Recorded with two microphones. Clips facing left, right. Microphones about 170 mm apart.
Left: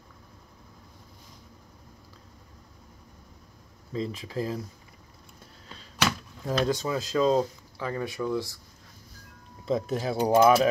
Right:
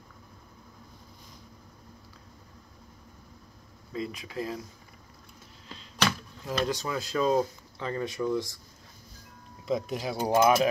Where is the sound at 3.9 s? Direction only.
35° left (ahead or behind).